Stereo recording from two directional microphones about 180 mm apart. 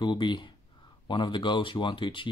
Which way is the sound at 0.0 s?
25° left (ahead or behind).